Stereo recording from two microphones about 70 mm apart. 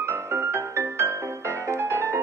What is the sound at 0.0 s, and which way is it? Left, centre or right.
Music, right.